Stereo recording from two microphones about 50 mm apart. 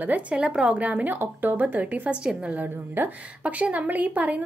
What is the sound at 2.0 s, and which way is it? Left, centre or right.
Speech, right.